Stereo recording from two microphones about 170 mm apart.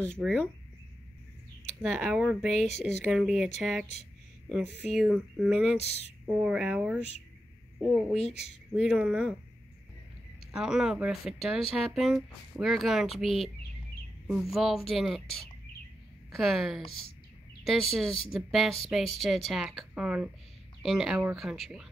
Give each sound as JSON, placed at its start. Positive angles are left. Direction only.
{"t": 0.0, "sound": "speech", "side_deg": 5}
{"t": 1.8, "sound": "speech", "side_deg": -5}
{"t": 10.5, "sound": "speech", "side_deg": -5}
{"t": 16.3, "sound": "speech", "side_deg": 0}